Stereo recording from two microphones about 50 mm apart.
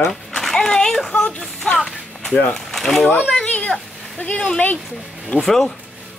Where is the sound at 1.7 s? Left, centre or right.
Centre.